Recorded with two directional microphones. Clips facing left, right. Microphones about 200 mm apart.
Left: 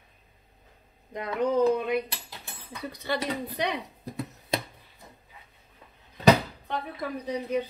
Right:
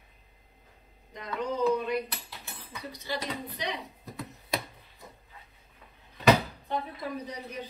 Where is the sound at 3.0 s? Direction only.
60° left (ahead or behind).